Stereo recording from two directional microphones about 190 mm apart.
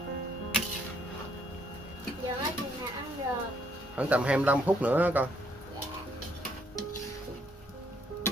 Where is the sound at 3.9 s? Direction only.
5° right (ahead or behind).